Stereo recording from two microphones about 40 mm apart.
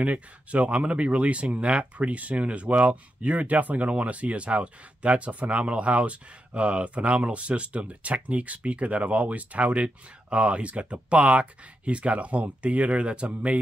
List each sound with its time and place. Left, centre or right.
0.0 s speech: right